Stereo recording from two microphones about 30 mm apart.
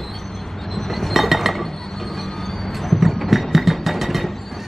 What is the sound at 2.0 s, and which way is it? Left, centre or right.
Train, centre.